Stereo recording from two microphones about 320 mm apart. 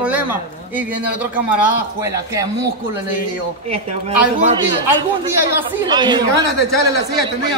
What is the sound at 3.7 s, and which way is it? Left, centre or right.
Speech, centre.